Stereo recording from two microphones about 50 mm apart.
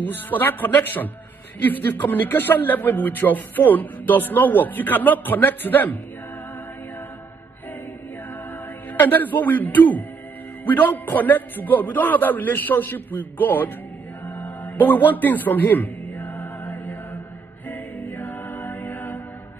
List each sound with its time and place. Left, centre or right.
0.0 s a man's voice: left
8.9 s a man's voice: left
14.2 s music: left
17.6 s a capella: left